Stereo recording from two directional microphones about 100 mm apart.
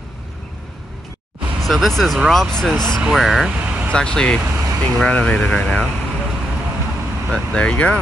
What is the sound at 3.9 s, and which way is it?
Speech, 10° left (ahead or behind).